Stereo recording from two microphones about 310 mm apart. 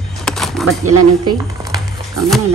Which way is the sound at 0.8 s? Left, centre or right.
Right.